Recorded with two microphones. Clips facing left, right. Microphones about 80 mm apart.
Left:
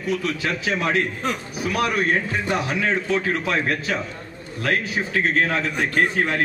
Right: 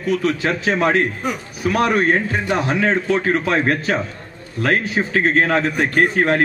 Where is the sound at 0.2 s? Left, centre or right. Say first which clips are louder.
Right 5 dB; right.